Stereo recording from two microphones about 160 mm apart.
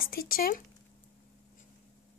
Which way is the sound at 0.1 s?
70° left (ahead or behind).